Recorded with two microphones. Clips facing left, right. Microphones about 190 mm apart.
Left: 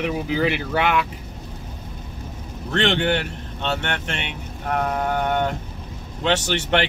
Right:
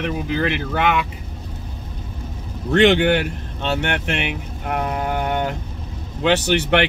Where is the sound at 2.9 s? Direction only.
30° left (ahead or behind).